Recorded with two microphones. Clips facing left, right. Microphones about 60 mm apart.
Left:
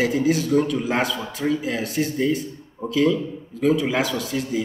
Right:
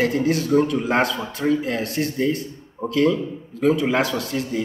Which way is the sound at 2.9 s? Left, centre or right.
Centre.